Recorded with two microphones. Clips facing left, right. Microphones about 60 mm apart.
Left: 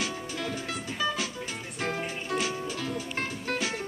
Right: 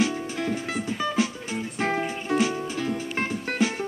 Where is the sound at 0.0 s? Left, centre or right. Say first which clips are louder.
Right 7 dB; right.